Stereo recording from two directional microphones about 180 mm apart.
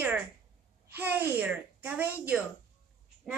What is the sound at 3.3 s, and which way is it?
Speech, 5° right (ahead or behind).